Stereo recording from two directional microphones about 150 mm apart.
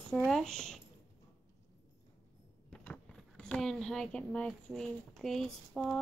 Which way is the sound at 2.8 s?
10° left (ahead or behind).